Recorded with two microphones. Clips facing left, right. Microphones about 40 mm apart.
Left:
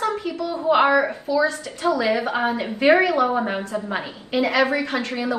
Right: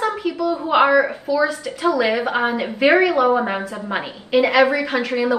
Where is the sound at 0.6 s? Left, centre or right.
Right.